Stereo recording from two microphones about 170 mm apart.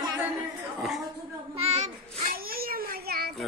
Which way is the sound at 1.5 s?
40° right (ahead or behind).